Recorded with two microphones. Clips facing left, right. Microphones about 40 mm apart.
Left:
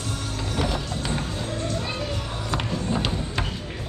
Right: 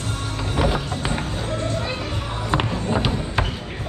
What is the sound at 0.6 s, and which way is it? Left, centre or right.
Music, right.